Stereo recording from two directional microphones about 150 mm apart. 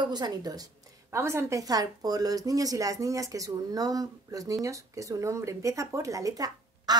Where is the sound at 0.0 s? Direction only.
30° right (ahead or behind).